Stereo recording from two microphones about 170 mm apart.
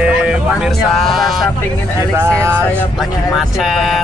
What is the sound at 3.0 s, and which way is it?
Speech, centre (ahead or behind).